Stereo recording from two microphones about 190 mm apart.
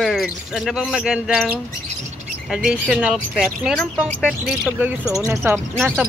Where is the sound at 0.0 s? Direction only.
Centre (ahead or behind).